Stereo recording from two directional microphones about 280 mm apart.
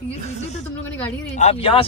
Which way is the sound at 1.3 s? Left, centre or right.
Left.